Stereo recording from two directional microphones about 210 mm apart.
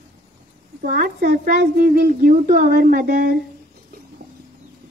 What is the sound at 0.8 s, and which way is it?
Speech, 45° right (ahead or behind).